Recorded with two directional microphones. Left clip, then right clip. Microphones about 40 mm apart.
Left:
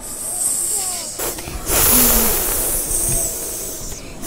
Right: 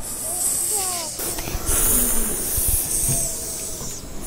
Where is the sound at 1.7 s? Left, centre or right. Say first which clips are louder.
Left 9 dB; left.